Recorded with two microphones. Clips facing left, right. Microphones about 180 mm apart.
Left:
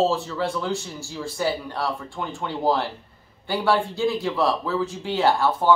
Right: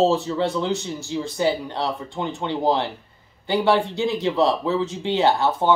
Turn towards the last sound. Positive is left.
turn(degrees=-25)  # may be behind; listen again after turning